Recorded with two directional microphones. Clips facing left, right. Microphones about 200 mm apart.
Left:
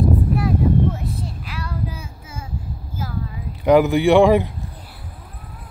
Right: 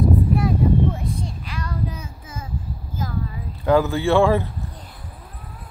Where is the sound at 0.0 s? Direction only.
Centre (ahead or behind).